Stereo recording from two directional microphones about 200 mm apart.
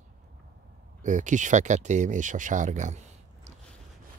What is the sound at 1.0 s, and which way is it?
Speech, 40° right (ahead or behind).